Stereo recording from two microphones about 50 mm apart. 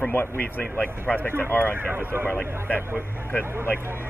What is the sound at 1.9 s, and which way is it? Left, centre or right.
Speech, right.